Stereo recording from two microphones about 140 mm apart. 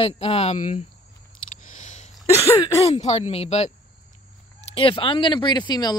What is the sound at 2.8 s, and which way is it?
Speech, 50° left (ahead or behind).